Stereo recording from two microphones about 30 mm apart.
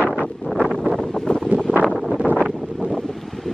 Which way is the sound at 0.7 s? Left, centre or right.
Left.